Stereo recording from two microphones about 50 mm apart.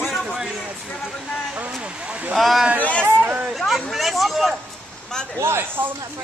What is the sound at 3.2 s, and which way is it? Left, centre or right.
Speech, right.